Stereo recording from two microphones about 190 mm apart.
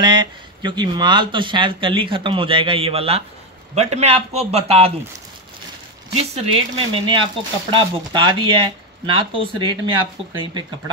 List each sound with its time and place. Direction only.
0.0 s a man's voice: 25° right (ahead or behind)
6.1 s speech: 30° right (ahead or behind)